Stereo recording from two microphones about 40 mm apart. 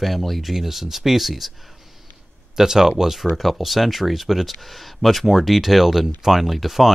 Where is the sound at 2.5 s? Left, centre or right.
Centre.